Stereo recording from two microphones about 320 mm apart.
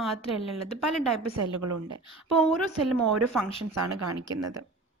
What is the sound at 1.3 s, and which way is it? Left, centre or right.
Speech, right.